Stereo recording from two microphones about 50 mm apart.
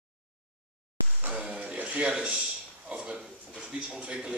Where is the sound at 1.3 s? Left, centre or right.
Right.